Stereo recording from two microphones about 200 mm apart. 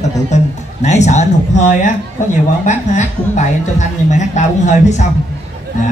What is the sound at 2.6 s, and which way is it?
Speech, 35° left (ahead or behind).